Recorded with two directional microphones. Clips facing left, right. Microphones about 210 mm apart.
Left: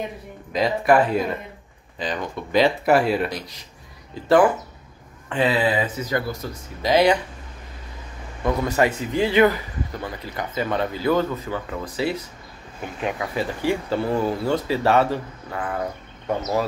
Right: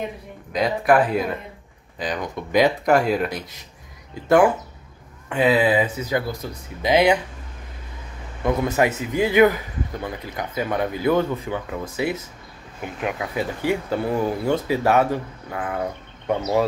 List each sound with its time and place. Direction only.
0.5 s speech: centre (ahead or behind); by 2.7 s 15° right (ahead or behind)
2.8 s speech: 5° left (ahead or behind)
5.3 s speech: 10° right (ahead or behind)
8.5 s speech: 15° right (ahead or behind)
13.0 s speech: 5° right (ahead or behind)
13.6 s speech: 15° right (ahead or behind)
16.3 s speech: 20° right (ahead or behind)